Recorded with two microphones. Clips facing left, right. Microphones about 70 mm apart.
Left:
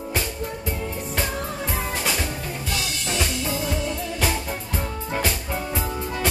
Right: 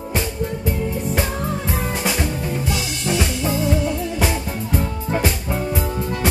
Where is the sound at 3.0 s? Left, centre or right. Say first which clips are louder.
Right 6 dB; centre.